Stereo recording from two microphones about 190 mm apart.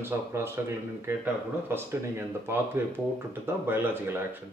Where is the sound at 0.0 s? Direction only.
15° right (ahead or behind).